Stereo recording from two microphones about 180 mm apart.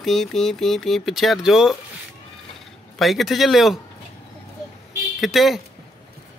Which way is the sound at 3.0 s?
Centre (ahead or behind).